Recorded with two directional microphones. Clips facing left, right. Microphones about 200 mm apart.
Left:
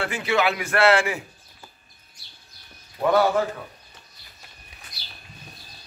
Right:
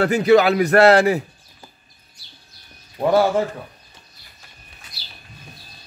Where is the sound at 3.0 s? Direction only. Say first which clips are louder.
Right 3 dB; 30° right (ahead or behind).